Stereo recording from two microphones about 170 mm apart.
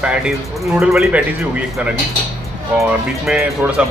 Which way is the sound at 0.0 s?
5° right (ahead or behind).